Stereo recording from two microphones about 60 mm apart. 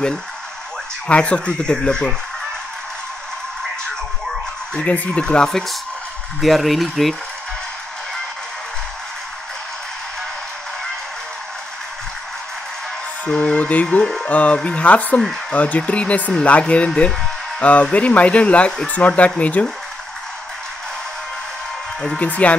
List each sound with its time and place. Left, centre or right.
1.0 s speech: centre
4.8 s speech: left
5.2 s speech: centre
13.3 s speech: centre
22.0 s speech: centre